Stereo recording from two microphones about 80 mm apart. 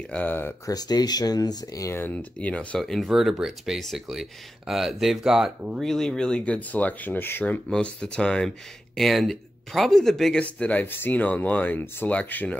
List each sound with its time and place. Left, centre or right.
0.1 s speech: left
0.7 s speech: left
2.0 s speech: left
2.8 s speech: centre
5.8 s speech: centre; by 7.6 s left
7.7 s speech: centre
10.4 s speech: centre